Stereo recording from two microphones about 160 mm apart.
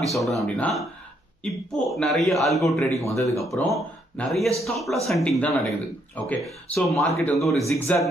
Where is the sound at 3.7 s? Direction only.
Centre (ahead or behind).